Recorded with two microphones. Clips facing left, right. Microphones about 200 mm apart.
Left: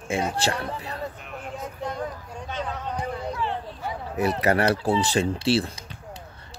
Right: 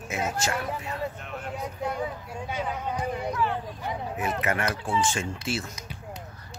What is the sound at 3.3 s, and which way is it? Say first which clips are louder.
Speech: right 1 dB; 30° left (ahead or behind).